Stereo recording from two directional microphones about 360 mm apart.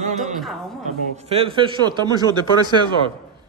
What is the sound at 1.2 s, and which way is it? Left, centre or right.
A man's voice, centre.